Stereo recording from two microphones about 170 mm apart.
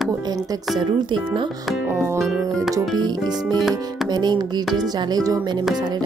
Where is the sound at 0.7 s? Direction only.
30° right (ahead or behind).